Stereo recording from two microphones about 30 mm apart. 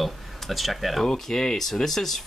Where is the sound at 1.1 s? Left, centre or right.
Centre.